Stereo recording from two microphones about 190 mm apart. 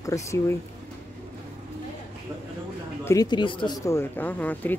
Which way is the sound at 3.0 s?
15° left (ahead or behind).